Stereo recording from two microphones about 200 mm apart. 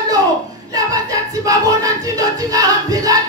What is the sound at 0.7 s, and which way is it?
Music, 15° right (ahead or behind).